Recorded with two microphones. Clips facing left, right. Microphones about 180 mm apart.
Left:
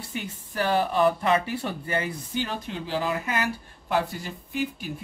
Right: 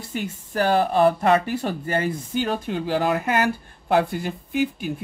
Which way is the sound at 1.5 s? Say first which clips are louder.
Right 4 dB; 40° right (ahead or behind).